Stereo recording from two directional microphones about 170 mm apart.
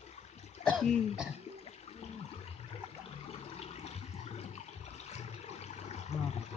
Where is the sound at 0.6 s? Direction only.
5° left (ahead or behind).